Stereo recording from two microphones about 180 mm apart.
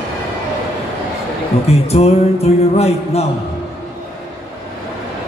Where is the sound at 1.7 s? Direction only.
35° left (ahead or behind).